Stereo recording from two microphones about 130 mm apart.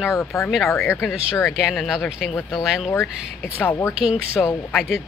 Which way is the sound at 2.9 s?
15° left (ahead or behind).